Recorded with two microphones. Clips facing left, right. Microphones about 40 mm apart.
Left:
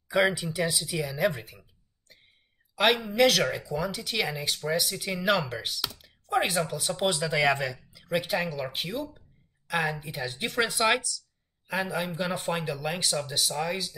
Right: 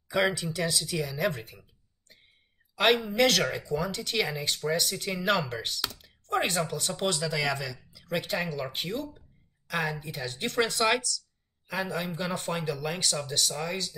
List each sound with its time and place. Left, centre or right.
0.1 s a woman's voice: centre
7.3 s speech: left
7.9 s a woman's voice: centre